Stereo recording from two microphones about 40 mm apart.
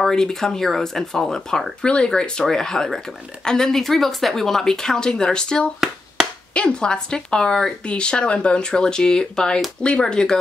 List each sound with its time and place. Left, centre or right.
0.1 s speech: centre